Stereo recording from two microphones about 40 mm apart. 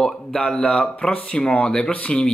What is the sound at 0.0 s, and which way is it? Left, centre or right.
Speech, left.